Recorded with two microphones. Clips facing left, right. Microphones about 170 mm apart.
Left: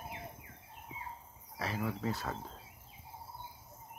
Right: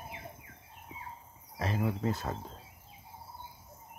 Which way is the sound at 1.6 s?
20° right (ahead or behind).